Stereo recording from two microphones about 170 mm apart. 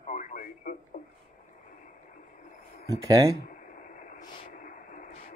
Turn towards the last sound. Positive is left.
turn(degrees=50)  # may be behind; listen again after turning